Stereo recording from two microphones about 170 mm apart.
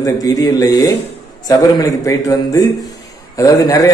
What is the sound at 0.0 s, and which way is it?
A man's voice, 20° left (ahead or behind).